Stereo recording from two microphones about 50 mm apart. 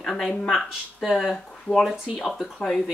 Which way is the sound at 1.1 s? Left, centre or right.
Centre.